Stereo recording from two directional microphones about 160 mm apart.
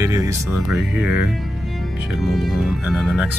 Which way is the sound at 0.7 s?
5° right (ahead or behind).